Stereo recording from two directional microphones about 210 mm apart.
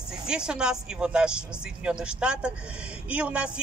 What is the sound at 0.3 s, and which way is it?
A man's voice, 5° right (ahead or behind).